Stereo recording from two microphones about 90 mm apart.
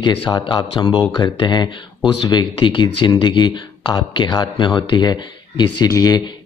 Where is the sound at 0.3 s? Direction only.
60° left (ahead or behind).